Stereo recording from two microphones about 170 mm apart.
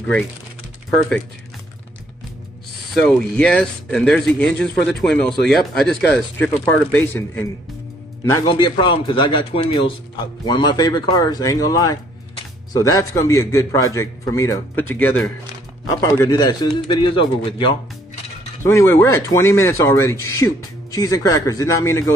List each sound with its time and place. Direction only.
2.9 s a man's voice: 5° left (ahead or behind); by 17.7 s 30° left (ahead or behind)
18.6 s speech: 15° left (ahead or behind)